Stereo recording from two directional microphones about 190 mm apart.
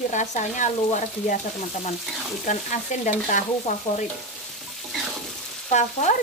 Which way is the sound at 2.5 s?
40° left (ahead or behind).